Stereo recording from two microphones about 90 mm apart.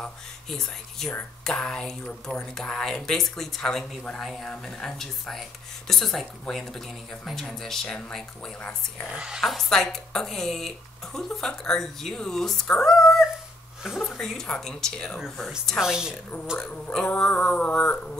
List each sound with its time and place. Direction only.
0.0 s speech: 5° left (ahead or behind)
8.6 s speech: 20° left (ahead or behind)
9.1 s speech: 10° right (ahead or behind)
16.9 s speech: 10° left (ahead or behind)